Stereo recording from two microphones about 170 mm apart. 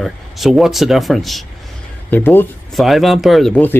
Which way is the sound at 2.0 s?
10° left (ahead or behind).